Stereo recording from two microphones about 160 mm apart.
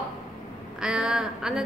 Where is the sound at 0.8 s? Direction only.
5° right (ahead or behind).